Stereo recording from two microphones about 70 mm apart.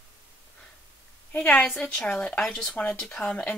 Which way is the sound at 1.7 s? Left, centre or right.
Centre.